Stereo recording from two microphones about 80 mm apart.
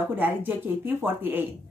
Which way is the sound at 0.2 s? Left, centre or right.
Right.